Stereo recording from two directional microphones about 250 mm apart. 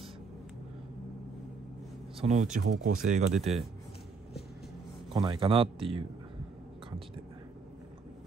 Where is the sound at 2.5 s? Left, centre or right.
Right.